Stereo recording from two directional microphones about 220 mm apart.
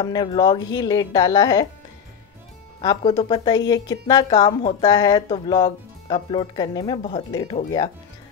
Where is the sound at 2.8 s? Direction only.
20° left (ahead or behind).